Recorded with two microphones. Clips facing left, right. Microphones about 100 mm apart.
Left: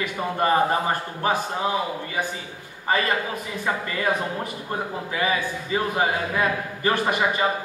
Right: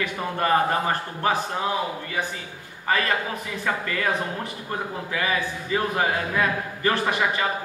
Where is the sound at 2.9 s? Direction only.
20° left (ahead or behind).